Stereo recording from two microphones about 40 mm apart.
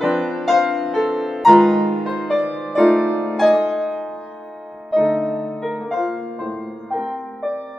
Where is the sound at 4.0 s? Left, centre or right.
Left.